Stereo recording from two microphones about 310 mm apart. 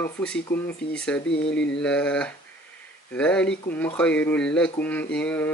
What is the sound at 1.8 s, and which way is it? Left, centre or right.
Speech, centre.